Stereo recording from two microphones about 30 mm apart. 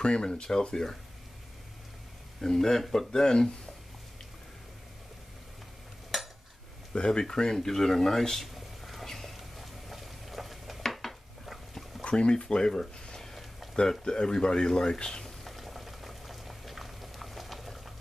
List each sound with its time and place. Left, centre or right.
0.0 s speech: left
2.4 s speech: centre
3.1 s speech: centre
6.1 s cutlery: centre
6.9 s speech: left
7.5 s speech: centre
8.5 s a sound: centre
9.0 s a sound: centre
10.9 s dishes: centre
12.0 s speech: left
13.2 s a sound: centre
13.7 s speech: left
15.2 s boiling: centre